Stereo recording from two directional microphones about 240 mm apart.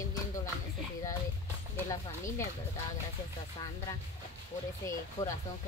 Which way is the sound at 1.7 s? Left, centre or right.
Centre.